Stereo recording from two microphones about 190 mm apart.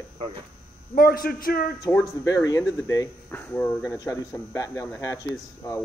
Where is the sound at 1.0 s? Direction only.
50° left (ahead or behind).